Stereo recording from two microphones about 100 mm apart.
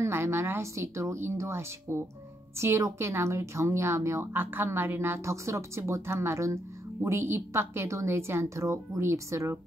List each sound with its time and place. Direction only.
0.0 s a woman's voice: 25° right (ahead or behind)